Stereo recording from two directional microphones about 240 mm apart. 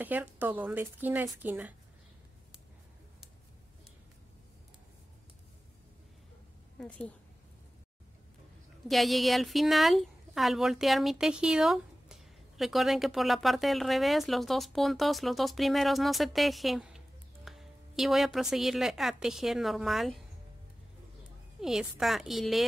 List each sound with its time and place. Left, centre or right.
0.0 s speech: centre
8.8 s a woman's voice: centre
21.5 s speech: centre